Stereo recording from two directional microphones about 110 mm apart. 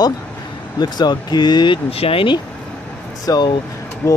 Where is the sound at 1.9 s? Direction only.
60° left (ahead or behind).